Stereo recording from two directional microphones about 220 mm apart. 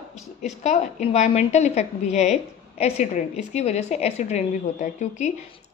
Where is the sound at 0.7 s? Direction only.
30° left (ahead or behind).